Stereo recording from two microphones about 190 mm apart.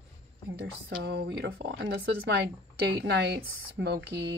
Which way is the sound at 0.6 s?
60° right (ahead or behind).